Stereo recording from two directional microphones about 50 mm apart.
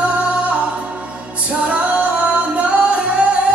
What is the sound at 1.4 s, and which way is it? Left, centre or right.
Music, right.